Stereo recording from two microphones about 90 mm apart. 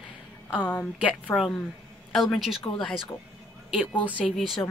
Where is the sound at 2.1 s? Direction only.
Centre (ahead or behind).